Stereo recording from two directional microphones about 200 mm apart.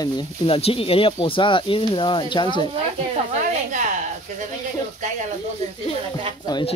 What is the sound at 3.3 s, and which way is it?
Speech, 40° right (ahead or behind).